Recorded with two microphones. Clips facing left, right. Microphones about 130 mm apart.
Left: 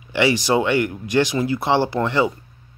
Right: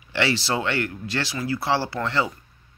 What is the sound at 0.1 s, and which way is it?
Speech, 15° left (ahead or behind).